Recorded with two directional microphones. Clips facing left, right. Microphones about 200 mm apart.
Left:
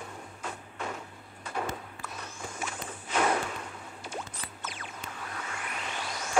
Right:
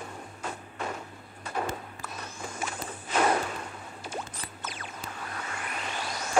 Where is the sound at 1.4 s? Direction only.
40° right (ahead or behind).